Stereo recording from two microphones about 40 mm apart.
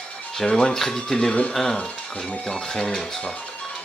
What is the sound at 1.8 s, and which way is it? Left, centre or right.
Speech, left.